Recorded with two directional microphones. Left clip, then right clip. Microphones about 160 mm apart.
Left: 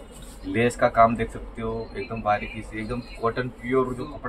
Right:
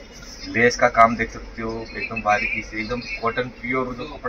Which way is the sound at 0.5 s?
5° left (ahead or behind).